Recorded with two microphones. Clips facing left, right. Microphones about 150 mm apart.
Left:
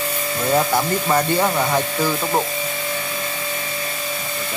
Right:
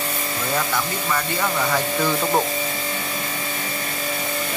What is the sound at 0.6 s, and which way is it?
Speech, 35° left (ahead or behind).